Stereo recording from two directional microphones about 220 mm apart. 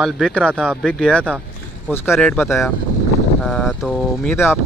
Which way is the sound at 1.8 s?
10° left (ahead or behind).